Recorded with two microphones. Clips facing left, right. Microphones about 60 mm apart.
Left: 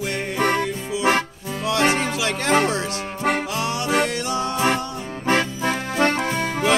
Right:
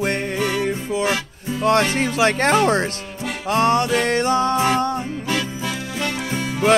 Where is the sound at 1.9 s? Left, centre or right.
Left.